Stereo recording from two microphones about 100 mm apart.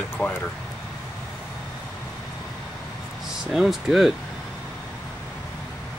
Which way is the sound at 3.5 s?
5° right (ahead or behind).